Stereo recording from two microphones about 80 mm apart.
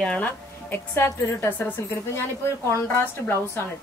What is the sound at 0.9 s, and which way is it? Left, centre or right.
Speech, left.